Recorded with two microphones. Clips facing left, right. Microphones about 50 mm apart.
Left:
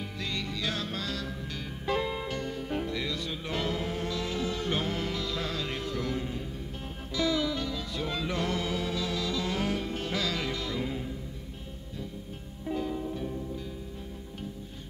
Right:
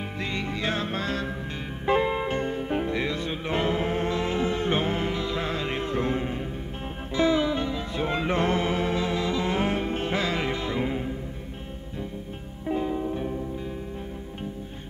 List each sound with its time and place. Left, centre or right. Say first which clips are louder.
0.2 s music: right 5 dB; right
12.6 s music: right 5 dB; right